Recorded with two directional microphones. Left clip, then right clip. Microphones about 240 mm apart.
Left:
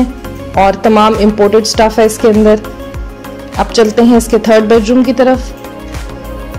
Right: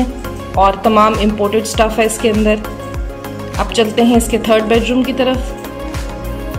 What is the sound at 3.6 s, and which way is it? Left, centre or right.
Speech, left.